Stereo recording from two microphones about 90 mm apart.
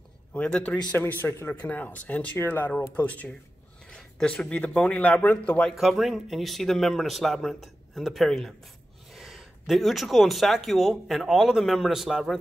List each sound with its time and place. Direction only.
0.3 s speech: 10° left (ahead or behind)
0.9 s speech: 25° left (ahead or behind)
3.9 s speech: 5° left (ahead or behind)
5.8 s speech: centre (ahead or behind)